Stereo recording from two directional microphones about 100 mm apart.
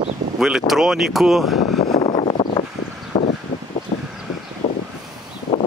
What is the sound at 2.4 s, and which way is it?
Vehicle, 45° left (ahead or behind).